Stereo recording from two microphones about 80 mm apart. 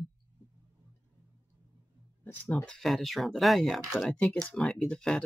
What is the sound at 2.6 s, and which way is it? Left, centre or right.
Speech, centre.